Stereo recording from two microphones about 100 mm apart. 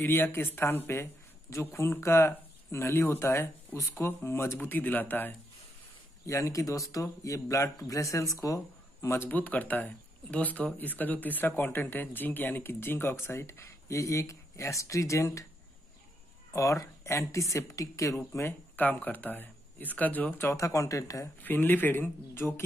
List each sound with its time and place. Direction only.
0.0 s speech: 20° left (ahead or behind)
6.2 s speech: 30° left (ahead or behind)
16.5 s speech: 30° left (ahead or behind)
21.4 s speech: 20° left (ahead or behind)